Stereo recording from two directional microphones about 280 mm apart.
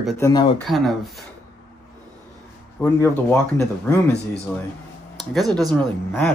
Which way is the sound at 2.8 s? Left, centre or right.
Centre.